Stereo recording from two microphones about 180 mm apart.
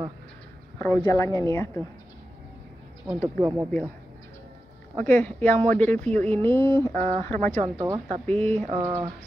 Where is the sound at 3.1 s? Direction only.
Centre (ahead or behind).